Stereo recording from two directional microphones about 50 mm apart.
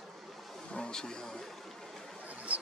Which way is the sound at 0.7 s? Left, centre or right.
Centre.